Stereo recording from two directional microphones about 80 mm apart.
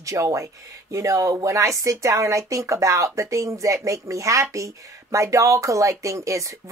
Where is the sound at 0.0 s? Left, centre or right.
Right.